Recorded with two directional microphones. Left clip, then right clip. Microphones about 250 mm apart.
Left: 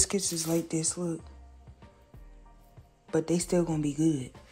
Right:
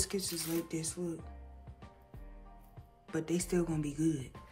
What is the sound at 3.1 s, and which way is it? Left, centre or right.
Speech, centre.